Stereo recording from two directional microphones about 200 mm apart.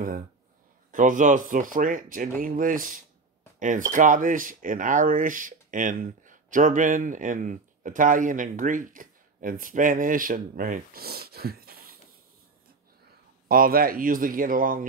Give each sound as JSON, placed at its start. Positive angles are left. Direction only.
{"t": 0.9, "sound": "speech", "side_deg": -40}
{"t": 13.5, "sound": "speech", "side_deg": -45}